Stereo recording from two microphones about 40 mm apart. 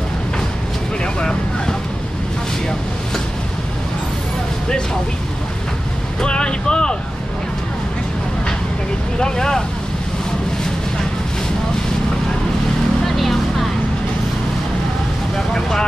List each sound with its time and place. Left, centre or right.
6.2 s vehicle: left
9.2 s speech: centre
13.0 s vehicle: centre
15.3 s vehicle: centre